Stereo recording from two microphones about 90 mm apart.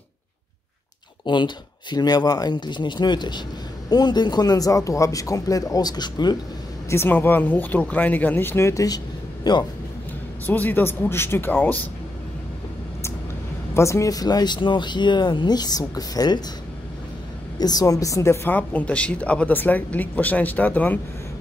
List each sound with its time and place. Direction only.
1.2 s speech: 60° left (ahead or behind)
6.9 s speech: 25° left (ahead or behind); by 9.7 s 55° left (ahead or behind)
10.4 s speech: 20° left (ahead or behind)
13.7 s speech: 35° left (ahead or behind)
17.6 s a woman's voice: 45° left (ahead or behind)
18.5 s speech: 15° left (ahead or behind)